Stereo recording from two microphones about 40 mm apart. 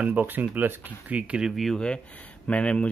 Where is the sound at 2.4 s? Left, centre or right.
Left.